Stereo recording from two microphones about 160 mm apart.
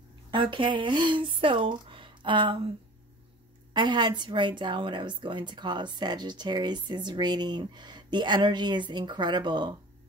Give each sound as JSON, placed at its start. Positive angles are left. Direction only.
{"t": 0.3, "sound": "speech", "side_deg": -30}
{"t": 3.7, "sound": "a woman's voice", "side_deg": -30}